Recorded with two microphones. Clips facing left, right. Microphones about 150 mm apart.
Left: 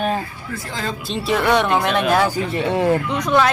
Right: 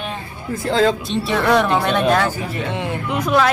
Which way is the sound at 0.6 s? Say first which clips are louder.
Right 12 dB; 75° right (ahead or behind).